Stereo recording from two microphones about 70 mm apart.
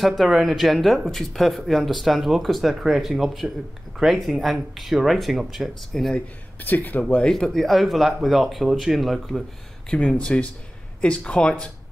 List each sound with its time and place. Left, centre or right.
0.0 s speech: centre
6.1 s speech: left
7.2 s speech: centre
9.8 s speech: centre